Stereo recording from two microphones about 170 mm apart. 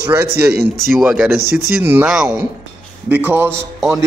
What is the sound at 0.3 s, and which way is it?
Speech, 70° right (ahead or behind).